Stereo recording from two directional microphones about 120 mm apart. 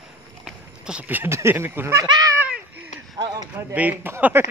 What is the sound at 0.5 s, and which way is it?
Speech, 10° right (ahead or behind).